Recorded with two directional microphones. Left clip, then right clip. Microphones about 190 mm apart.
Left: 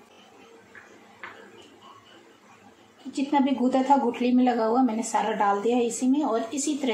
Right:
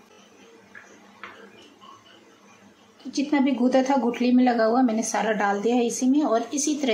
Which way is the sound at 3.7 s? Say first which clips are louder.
Left 2 dB; 20° right (ahead or behind).